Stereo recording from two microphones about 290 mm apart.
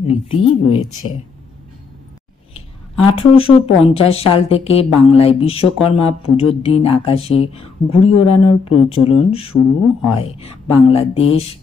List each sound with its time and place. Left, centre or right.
0.0 s speech: centre
2.5 s speech: centre